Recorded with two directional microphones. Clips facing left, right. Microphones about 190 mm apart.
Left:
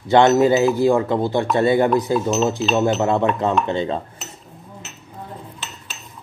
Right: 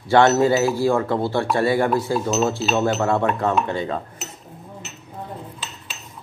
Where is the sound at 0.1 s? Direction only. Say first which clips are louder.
Left 2 dB; 20° left (ahead or behind).